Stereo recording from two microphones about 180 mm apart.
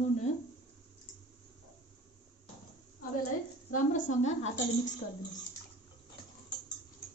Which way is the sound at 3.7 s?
45° left (ahead or behind).